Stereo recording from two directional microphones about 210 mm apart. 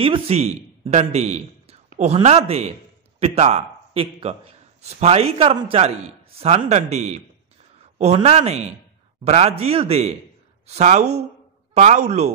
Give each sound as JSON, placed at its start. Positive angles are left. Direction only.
{"t": 0.0, "sound": "a man's voice", "side_deg": -30}